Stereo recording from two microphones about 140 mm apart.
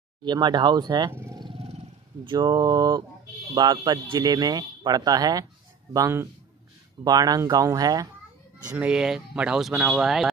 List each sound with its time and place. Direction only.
0.2 s speech: 30° right (ahead or behind)
1.1 s wild animals: 20° right (ahead or behind)
1.4 s a sound: 40° right (ahead or behind)
2.2 s speech: 30° right (ahead or behind)
8.7 s speech: 5° right (ahead or behind)